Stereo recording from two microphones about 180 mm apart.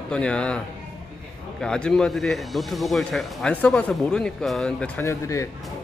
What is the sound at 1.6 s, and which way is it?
Speech, 5° left (ahead or behind).